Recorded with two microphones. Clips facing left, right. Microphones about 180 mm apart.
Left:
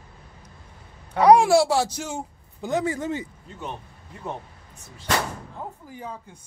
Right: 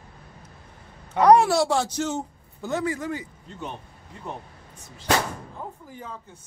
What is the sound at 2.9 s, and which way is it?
Speech, 25° left (ahead or behind).